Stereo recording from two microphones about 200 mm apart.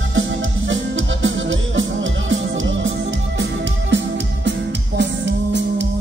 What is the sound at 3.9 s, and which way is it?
Music, 70° right (ahead or behind).